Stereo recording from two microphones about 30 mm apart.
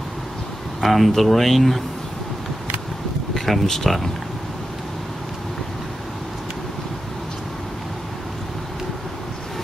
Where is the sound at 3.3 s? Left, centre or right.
Centre.